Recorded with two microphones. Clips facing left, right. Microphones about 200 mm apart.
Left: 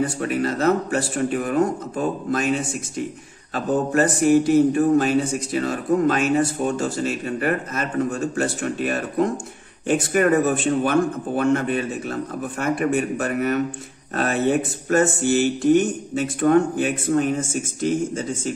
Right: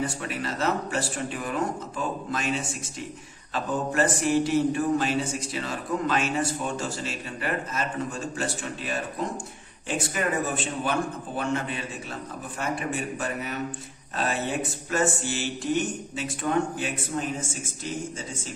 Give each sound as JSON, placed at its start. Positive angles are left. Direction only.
{"t": 0.2, "sound": "speech", "side_deg": 50}
{"t": 3.5, "sound": "speech", "side_deg": 45}
{"t": 14.9, "sound": "speech", "side_deg": 50}